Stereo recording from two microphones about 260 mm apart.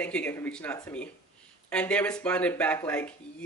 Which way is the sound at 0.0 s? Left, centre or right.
Centre.